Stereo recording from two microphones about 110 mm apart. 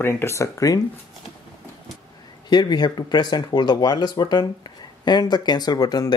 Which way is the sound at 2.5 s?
40° left (ahead or behind).